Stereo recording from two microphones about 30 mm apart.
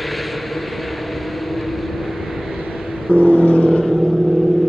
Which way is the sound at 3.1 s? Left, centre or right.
Left.